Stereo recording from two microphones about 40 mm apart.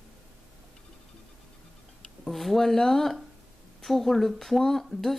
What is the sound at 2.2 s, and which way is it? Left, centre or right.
Speech, centre.